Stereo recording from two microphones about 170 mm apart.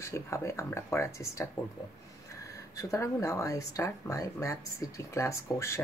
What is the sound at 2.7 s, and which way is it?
Speech, 20° left (ahead or behind).